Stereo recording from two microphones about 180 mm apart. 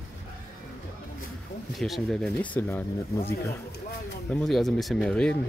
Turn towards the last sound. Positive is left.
turn(degrees=5)  # may be behind; listen again after turning